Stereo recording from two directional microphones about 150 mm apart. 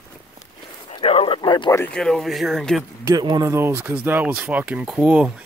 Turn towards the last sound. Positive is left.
turn(degrees=-10)  # may be behind; listen again after turning